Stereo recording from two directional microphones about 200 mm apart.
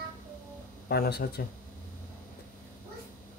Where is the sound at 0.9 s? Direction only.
55° left (ahead or behind).